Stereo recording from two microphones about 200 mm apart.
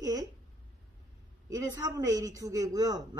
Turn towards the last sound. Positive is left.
turn(degrees=-20)  # may be behind; listen again after turning